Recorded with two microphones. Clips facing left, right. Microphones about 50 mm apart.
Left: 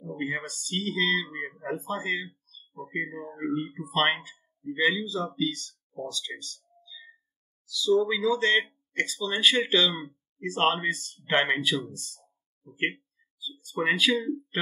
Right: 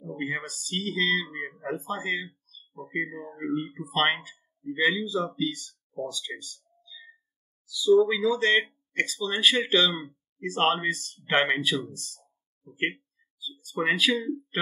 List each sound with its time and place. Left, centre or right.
0.0 s speech: centre